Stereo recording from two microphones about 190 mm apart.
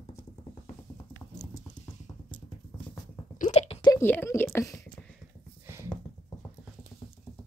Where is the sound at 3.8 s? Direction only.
15° left (ahead or behind).